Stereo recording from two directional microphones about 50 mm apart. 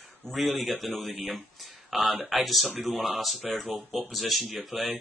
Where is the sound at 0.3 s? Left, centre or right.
Centre.